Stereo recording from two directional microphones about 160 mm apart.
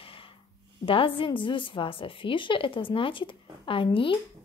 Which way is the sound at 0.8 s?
35° left (ahead or behind).